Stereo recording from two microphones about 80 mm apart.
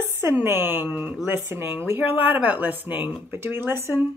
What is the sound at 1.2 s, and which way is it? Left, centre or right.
Speech, right.